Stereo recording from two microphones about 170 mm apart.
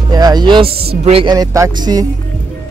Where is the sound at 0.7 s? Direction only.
70° right (ahead or behind).